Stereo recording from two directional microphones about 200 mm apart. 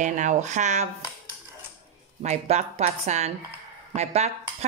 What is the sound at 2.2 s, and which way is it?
A woman's voice, 35° right (ahead or behind).